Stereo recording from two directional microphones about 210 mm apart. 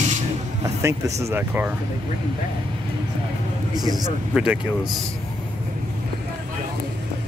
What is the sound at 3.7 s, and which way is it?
Speech, 20° right (ahead or behind).